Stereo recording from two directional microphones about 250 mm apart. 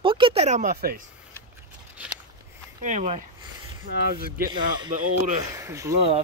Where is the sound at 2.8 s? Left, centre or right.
Right.